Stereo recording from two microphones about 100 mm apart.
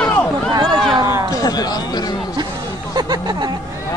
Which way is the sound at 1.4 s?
40° left (ahead or behind).